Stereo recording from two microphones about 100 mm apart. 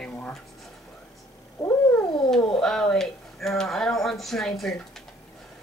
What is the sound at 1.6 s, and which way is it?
Cat, 30° left (ahead or behind).